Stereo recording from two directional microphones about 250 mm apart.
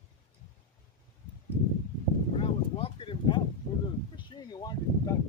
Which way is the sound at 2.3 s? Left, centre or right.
Left.